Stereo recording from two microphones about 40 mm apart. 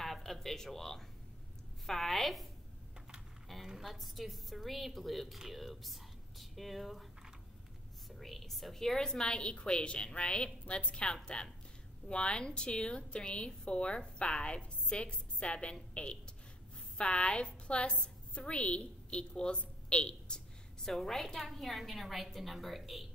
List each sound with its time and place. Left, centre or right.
0.0 s a sound: centre
1.9 s a woman's voice: centre
3.6 s a woman's voice: centre
8.2 s a woman's voice: centre; by 19.6 s left
19.9 s a sound: left
20.9 s a woman's voice: centre